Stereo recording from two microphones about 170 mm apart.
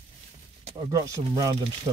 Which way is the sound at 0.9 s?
20° right (ahead or behind).